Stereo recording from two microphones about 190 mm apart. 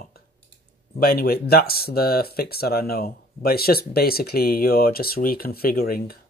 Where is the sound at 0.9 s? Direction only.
55° left (ahead or behind).